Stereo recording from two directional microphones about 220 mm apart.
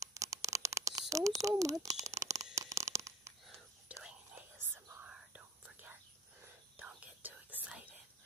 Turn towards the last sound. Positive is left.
turn(degrees=-5)  # may be behind; listen again after turning